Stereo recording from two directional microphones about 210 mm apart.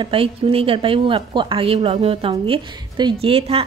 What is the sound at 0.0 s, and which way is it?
A woman's voice, 25° right (ahead or behind).